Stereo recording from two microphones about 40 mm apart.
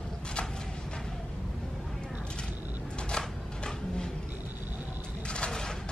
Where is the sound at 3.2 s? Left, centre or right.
Centre.